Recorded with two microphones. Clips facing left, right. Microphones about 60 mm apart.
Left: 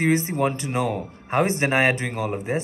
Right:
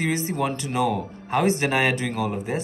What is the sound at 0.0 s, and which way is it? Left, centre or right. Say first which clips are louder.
Speech: left 3 dB; left.